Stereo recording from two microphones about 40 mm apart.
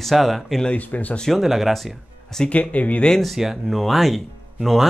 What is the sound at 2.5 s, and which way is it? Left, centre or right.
Speech, left.